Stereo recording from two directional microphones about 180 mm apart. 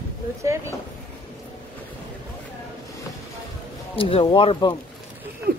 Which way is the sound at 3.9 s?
30° left (ahead or behind).